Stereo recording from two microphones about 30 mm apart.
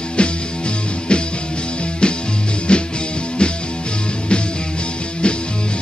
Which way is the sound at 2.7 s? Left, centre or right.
Left.